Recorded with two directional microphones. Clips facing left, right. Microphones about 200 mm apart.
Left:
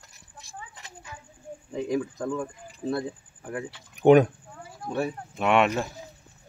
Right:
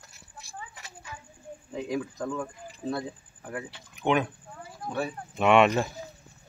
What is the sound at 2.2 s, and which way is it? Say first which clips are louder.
Speech: left 2 dB; 10° left (ahead or behind).